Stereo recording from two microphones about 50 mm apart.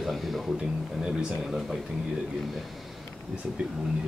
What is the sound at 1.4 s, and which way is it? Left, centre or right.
Speech, centre.